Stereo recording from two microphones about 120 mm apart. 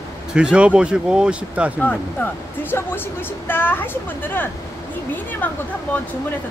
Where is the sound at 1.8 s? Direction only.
10° left (ahead or behind).